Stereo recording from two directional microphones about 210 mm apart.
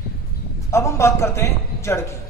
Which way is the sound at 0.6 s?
15° left (ahead or behind).